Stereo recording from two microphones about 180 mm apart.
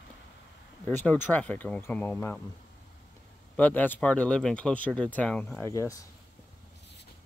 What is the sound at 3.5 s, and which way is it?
Speech, 10° left (ahead or behind).